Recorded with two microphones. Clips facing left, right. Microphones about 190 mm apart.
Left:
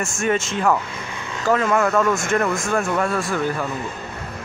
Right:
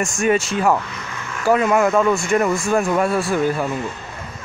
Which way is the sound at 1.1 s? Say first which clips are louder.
Right 1 dB; 15° left (ahead or behind).